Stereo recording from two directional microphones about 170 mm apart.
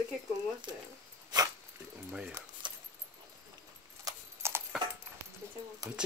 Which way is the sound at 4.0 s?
15° right (ahead or behind).